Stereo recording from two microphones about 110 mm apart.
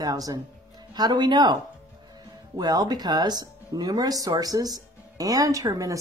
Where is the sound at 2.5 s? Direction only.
40° right (ahead or behind).